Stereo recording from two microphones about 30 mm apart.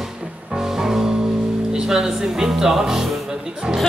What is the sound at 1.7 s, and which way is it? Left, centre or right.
Speech, right.